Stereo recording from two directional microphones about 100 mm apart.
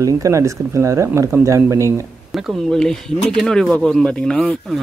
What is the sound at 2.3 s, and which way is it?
Speech, 5° left (ahead or behind).